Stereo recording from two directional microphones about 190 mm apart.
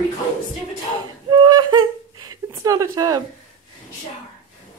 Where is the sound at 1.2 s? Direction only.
20° right (ahead or behind).